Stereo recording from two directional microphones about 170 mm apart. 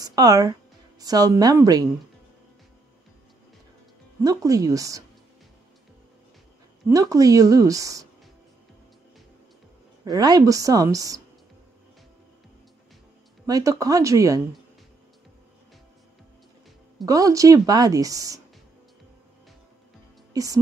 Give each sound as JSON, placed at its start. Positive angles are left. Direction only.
{"t": 0.0, "sound": "a woman's voice", "side_deg": -20}
{"t": 4.2, "sound": "a woman's voice", "side_deg": -20}
{"t": 6.9, "sound": "a woman's voice", "side_deg": -20}
{"t": 10.0, "sound": "a woman's voice", "side_deg": -25}
{"t": 13.5, "sound": "a woman's voice", "side_deg": -20}
{"t": 17.0, "sound": "a woman's voice", "side_deg": -20}
{"t": 20.3, "sound": "a woman's voice", "side_deg": -20}